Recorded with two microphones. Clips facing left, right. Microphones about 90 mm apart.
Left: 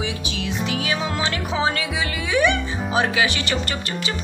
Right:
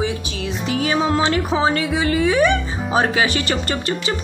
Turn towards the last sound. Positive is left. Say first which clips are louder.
# right 2 dB
turn(degrees=-40)  # may be behind; listen again after turning